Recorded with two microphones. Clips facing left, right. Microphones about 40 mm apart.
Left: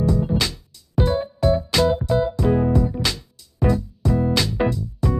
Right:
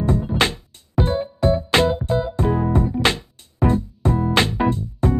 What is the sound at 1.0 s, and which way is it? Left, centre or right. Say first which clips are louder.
Music: left 1 dB; right.